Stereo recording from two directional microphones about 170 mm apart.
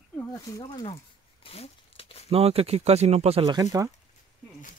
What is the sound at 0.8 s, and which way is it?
Crumpling, 30° left (ahead or behind).